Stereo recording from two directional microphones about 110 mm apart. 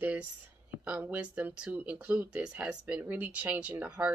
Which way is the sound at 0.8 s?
15° right (ahead or behind).